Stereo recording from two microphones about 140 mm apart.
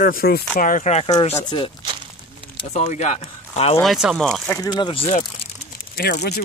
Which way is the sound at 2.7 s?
55° left (ahead or behind).